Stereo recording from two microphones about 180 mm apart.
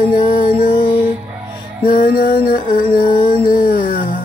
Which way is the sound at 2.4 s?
50° left (ahead or behind).